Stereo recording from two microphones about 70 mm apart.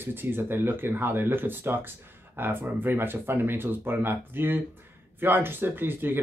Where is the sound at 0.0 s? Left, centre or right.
Right.